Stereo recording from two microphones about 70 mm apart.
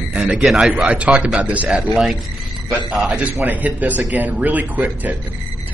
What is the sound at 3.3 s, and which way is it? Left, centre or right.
Speech, right.